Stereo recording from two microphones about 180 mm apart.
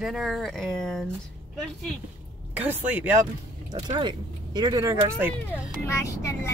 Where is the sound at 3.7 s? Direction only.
25° right (ahead or behind).